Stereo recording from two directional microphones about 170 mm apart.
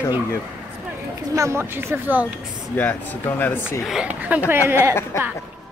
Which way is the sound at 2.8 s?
10° left (ahead or behind).